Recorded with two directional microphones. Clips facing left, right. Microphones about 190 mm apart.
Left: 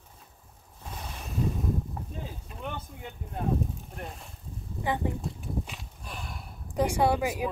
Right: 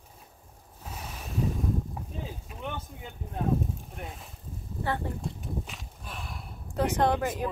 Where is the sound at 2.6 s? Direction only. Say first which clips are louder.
Even; centre (ahead or behind).